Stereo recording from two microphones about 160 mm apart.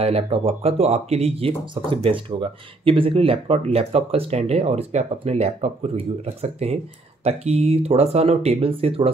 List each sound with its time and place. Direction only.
0.0 s speech: 40° right (ahead or behind)